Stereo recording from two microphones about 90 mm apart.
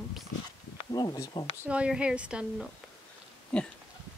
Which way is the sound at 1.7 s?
10° right (ahead or behind).